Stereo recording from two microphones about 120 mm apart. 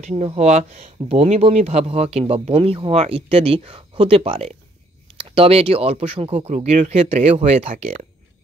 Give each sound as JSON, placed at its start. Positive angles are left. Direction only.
{"t": 0.0, "sound": "speech", "side_deg": -65}
{"t": 6.5, "sound": "speech", "side_deg": -70}